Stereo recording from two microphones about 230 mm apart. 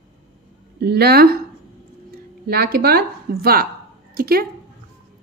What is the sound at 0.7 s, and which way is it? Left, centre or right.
Speech, right.